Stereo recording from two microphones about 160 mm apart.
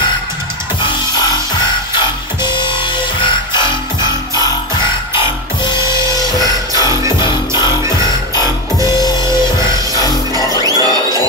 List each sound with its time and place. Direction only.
2.4 s music: 30° left (ahead or behind)
5.7 s music: 30° left (ahead or behind)
8.4 s music: 25° left (ahead or behind)